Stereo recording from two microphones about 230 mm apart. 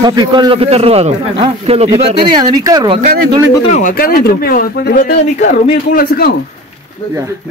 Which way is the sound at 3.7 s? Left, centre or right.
Left.